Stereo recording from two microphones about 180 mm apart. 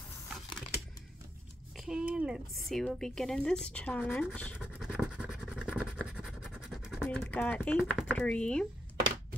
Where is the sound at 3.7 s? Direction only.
10° left (ahead or behind).